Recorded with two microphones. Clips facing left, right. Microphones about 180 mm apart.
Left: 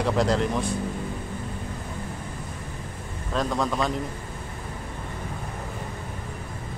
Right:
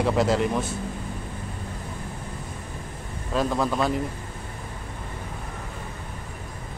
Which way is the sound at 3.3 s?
5° right (ahead or behind).